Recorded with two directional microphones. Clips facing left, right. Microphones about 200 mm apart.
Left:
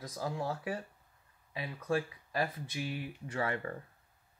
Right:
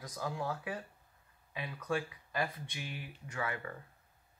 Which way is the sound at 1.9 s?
30° left (ahead or behind).